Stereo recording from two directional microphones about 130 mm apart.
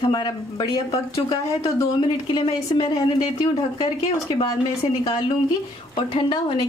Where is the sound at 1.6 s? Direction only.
40° left (ahead or behind).